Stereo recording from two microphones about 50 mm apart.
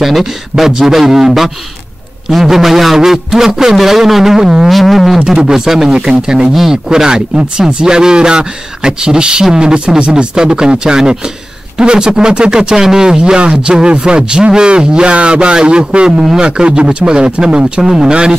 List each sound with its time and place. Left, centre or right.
0.0 s speech: centre
4.6 s a sound: centre
5.3 s speech: centre
17.8 s speech: centre